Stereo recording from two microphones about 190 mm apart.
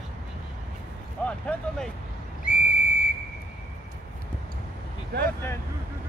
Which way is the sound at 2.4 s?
5° right (ahead or behind).